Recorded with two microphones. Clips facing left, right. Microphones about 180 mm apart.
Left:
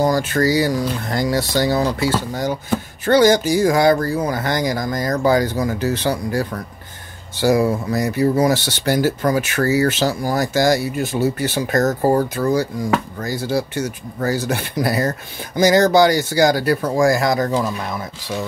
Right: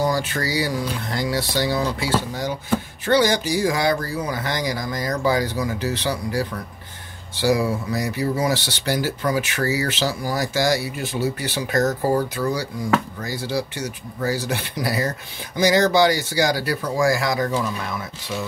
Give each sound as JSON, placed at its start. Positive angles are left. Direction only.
{"t": 0.0, "sound": "speech", "side_deg": 45}
{"t": 3.1, "sound": "speech", "side_deg": 45}